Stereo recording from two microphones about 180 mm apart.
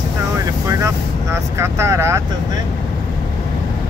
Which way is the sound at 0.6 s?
15° right (ahead or behind).